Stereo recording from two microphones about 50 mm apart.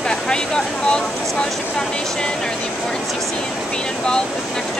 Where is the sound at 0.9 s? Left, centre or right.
Centre.